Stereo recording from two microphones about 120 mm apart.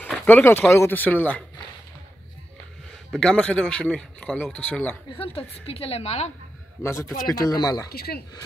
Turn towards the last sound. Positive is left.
turn(degrees=35)  # may be behind; listen again after turning